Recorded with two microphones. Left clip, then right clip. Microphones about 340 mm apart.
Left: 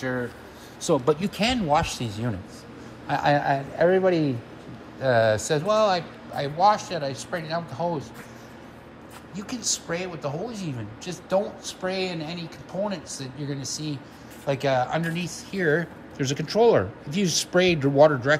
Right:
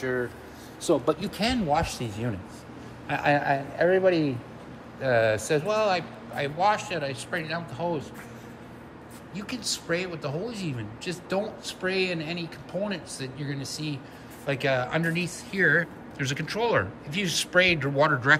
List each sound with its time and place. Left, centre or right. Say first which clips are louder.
0.8 s speech: left 2 dB; left
5.3 s speech: left 3 dB; centre
9.3 s speech: left 2 dB; centre